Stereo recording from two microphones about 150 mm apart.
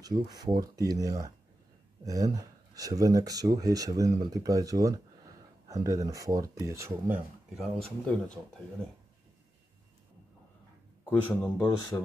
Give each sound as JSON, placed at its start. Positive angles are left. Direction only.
{"t": 0.0, "sound": "speech", "side_deg": -25}
{"t": 7.5, "sound": "speech", "side_deg": 0}
{"t": 11.1, "sound": "speech", "side_deg": 15}